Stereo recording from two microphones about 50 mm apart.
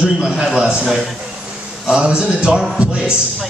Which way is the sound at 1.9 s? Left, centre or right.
Centre.